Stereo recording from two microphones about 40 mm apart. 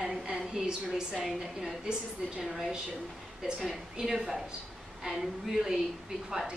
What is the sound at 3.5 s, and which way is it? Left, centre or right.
A woman's voice, centre.